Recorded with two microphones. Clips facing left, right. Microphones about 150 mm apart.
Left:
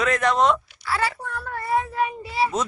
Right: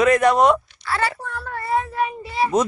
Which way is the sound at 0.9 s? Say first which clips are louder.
Right 2 dB; 10° left (ahead or behind).